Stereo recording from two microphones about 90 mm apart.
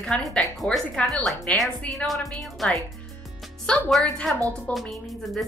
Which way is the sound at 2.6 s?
Centre (ahead or behind).